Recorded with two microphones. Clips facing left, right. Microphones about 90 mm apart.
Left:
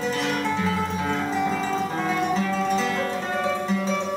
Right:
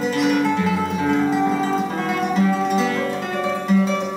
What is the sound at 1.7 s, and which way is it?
Music, 5° right (ahead or behind).